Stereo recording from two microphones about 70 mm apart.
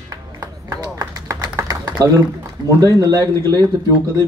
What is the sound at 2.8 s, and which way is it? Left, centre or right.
Speech, right.